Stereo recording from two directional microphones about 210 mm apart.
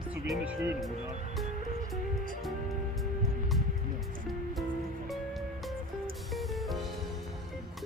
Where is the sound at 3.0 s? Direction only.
Centre (ahead or behind).